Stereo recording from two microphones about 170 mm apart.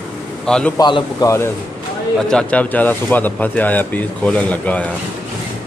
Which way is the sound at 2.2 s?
5° left (ahead or behind).